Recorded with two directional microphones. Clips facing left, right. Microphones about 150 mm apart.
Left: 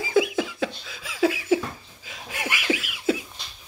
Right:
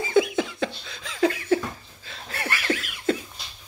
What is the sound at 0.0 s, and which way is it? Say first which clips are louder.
Laughter: right 1 dB; 5° left (ahead or behind).